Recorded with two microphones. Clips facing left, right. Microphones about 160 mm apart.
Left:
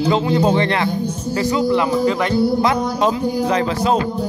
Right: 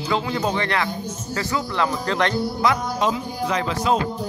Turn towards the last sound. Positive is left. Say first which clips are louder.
# left 4 dB
turn(degrees=35)  # may be behind; listen again after turning